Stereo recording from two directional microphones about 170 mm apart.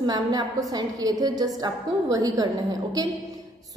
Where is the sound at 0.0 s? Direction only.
25° right (ahead or behind).